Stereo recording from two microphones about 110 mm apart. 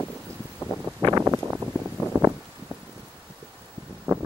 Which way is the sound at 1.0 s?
30° right (ahead or behind).